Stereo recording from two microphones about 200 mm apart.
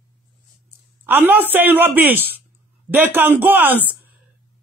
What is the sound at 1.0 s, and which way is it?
Speech, 10° right (ahead or behind).